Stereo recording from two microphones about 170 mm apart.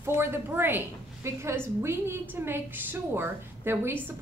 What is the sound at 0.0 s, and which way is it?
A woman's voice, 15° right (ahead or behind).